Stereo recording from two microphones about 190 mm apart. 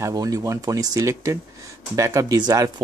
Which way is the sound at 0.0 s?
20° right (ahead or behind).